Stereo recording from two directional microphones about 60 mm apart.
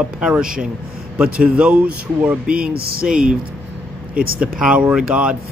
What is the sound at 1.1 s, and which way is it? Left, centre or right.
Speech, centre.